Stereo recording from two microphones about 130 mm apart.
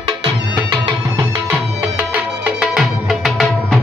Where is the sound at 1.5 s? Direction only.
10° right (ahead or behind).